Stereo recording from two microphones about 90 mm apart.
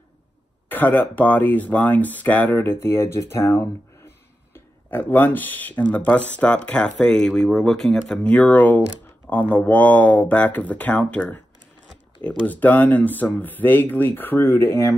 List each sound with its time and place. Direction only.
0.7 s speech: 20° left (ahead or behind); by 8.3 s 5° left (ahead or behind)
8.3 s speech: 15° left (ahead or behind); by 15.0 s 30° left (ahead or behind)